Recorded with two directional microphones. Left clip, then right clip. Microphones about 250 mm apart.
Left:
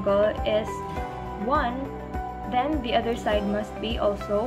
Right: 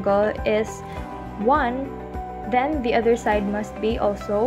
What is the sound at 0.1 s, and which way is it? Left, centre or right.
Speech, right.